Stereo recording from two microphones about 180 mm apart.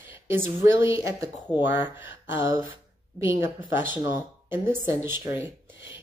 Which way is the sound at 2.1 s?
90° left.